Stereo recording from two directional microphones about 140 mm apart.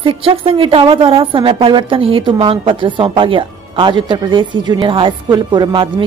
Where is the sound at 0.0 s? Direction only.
40° right (ahead or behind).